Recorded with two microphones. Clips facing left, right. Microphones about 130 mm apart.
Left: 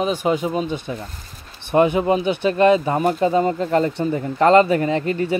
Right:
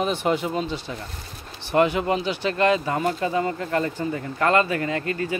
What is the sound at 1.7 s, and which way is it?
Speech, 20° left (ahead or behind).